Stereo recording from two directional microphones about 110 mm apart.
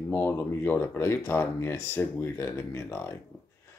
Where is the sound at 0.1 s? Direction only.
20° left (ahead or behind).